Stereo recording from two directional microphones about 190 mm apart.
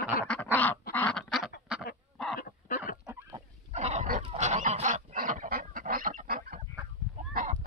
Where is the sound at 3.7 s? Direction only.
35° right (ahead or behind).